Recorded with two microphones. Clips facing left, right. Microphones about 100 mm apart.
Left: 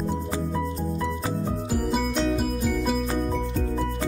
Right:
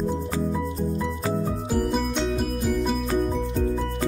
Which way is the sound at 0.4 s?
Centre (ahead or behind).